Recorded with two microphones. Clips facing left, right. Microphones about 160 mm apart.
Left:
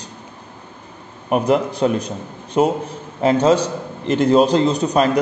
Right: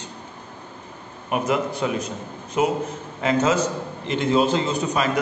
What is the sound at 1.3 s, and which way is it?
A man's voice, 35° left (ahead or behind).